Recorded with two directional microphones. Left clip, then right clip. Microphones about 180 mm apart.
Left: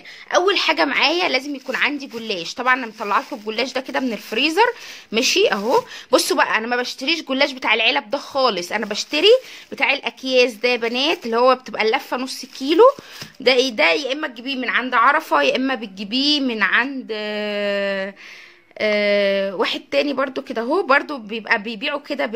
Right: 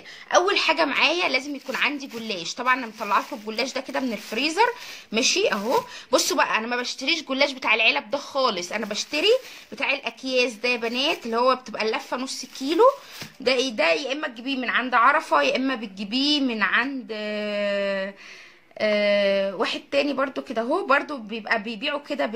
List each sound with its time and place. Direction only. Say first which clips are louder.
0.3 s a woman's voice: left 3 dB; 35° left (ahead or behind)